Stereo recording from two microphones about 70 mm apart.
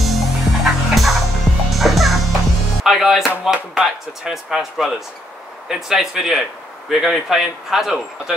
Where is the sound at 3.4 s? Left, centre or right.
Centre.